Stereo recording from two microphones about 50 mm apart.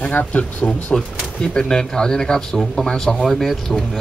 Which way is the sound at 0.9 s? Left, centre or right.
Centre.